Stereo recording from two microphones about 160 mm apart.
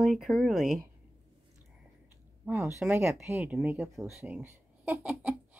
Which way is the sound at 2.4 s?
15° right (ahead or behind).